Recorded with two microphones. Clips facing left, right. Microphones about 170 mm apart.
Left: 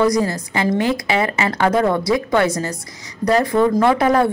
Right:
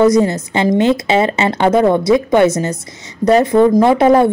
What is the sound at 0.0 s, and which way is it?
A woman's voice, 25° right (ahead or behind).